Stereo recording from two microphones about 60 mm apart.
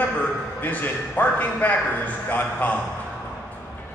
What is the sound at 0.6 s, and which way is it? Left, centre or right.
A man's voice, left.